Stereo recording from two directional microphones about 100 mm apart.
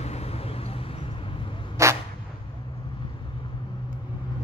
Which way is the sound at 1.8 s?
30° right (ahead or behind).